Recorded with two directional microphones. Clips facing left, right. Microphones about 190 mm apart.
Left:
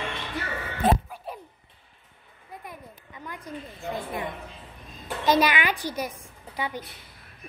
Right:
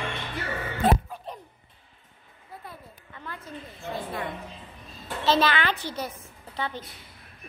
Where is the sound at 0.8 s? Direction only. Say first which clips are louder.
Left 1 dB; 10° left (ahead or behind).